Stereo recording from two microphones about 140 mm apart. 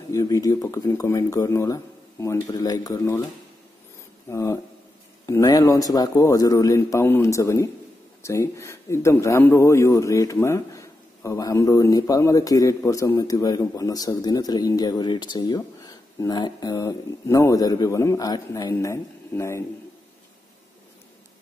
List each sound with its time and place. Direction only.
0.1 s a man's voice: 25° left (ahead or behind)
4.3 s a man's voice: 20° left (ahead or behind)